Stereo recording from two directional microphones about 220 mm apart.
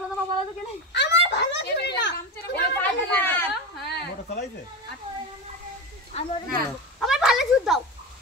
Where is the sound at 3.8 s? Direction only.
50° left (ahead or behind).